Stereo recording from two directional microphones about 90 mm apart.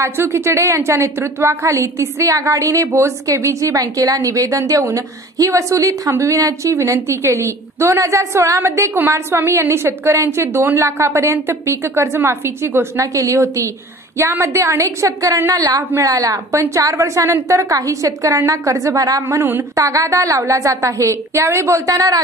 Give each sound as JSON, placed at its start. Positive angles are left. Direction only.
{"t": 0.0, "sound": "a woman's voice", "side_deg": -30}
{"t": 19.2, "sound": "a woman's voice", "side_deg": -25}
{"t": 19.7, "sound": "a woman's voice", "side_deg": -35}